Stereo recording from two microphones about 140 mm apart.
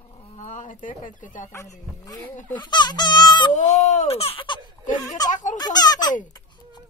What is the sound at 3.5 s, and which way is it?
Speech, 55° left (ahead or behind).